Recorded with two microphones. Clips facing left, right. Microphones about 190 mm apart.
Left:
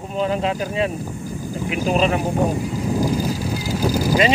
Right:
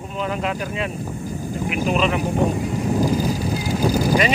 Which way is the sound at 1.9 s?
40° left (ahead or behind).